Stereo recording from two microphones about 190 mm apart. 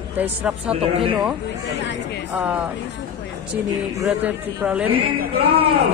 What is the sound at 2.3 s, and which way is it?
Speech, 5° right (ahead or behind).